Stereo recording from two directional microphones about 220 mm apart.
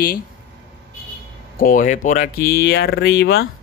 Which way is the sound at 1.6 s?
35° left (ahead or behind).